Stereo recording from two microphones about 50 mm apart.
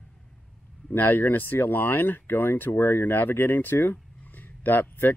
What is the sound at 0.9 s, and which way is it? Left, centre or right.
Speech, left.